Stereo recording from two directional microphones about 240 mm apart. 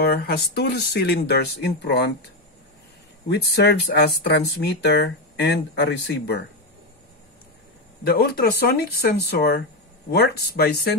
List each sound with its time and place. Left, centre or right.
0.0 s speech: left
3.3 s speech: left
8.0 s speech: left